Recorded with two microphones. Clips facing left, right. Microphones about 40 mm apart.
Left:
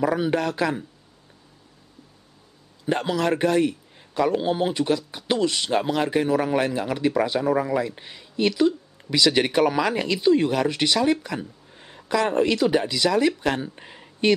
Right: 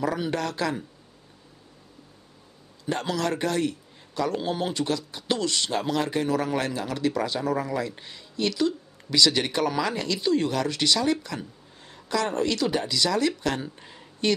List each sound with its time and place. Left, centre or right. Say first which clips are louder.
0.0 s speech: left 5 dB; centre
2.8 s speech: left 4 dB; centre
13.7 s a sound: left 4 dB; left